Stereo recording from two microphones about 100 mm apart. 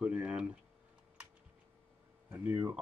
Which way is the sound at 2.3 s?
20° right (ahead or behind).